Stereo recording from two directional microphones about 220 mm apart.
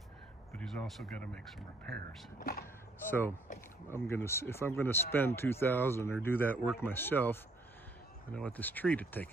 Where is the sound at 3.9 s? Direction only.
10° left (ahead or behind).